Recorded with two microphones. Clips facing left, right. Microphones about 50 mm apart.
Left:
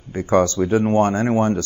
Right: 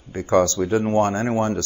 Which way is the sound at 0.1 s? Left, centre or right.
Left.